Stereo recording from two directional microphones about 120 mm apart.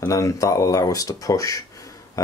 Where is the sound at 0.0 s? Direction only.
30° left (ahead or behind).